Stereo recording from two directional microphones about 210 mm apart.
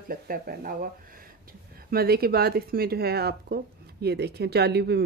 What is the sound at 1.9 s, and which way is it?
Speech, 45° right (ahead or behind).